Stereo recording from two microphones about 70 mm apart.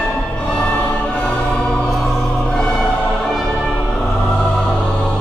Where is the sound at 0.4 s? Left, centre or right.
Centre.